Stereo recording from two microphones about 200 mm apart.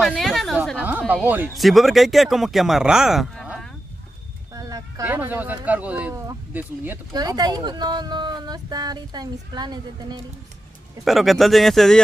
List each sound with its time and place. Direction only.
0.0 s speech: centre (ahead or behind)
4.6 s speech: 20° right (ahead or behind)
7.2 s speech: 20° right (ahead or behind)
11.1 s speech: centre (ahead or behind)